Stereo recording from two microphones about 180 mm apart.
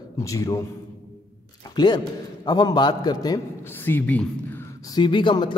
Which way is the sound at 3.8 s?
10° left (ahead or behind).